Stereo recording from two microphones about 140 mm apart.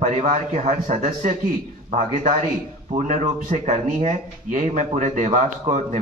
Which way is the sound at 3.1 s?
65° right (ahead or behind).